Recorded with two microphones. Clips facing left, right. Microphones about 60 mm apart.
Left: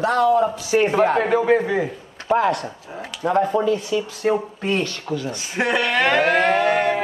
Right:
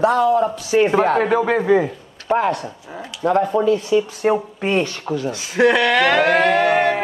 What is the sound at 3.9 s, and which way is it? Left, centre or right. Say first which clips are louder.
Speech: right 4 dB; right.